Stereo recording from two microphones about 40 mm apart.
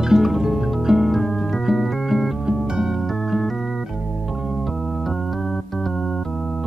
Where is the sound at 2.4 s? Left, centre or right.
Right.